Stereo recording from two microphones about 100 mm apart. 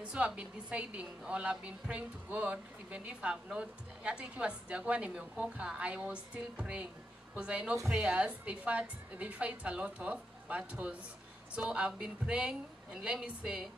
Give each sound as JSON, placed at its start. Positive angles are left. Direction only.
{"t": 0.1, "sound": "a woman's voice", "side_deg": -10}